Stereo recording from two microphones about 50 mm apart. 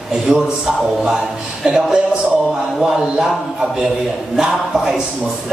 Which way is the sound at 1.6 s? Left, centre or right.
Centre.